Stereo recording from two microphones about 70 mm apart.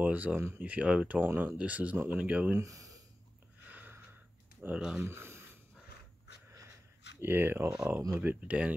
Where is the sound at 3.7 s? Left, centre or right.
Right.